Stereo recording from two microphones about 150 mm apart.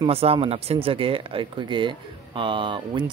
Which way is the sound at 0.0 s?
40° right (ahead or behind).